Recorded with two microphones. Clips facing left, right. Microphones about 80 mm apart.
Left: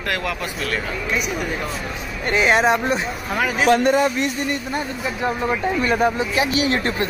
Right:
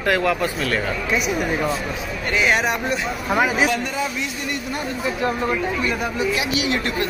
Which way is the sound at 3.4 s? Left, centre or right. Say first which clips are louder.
Left 5 dB; centre.